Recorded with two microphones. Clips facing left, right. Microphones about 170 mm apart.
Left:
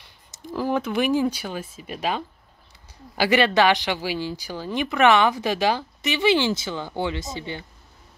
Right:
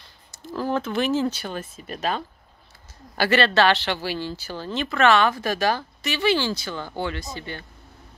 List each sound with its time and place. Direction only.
0.0 s speech: 15° left (ahead or behind)